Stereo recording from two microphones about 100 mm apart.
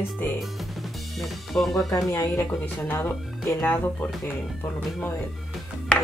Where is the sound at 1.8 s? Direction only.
35° left (ahead or behind).